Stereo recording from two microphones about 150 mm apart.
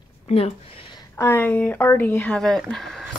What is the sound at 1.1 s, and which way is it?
Speech, 15° left (ahead or behind).